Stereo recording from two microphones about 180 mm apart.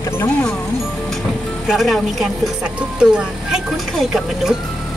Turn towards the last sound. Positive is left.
turn(degrees=0)  # may be behind; listen again after turning